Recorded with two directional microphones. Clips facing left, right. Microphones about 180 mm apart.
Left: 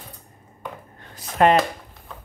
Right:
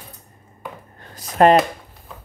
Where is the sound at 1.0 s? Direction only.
40° right (ahead or behind).